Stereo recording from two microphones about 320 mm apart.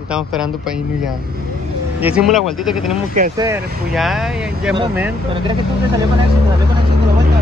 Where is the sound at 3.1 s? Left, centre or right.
Right.